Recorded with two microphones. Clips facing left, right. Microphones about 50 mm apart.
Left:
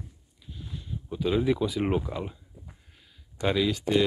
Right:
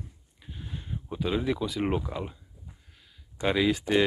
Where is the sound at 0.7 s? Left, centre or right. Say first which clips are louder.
Even; right.